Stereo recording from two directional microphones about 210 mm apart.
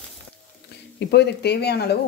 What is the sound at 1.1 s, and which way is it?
Speech, 50° left (ahead or behind).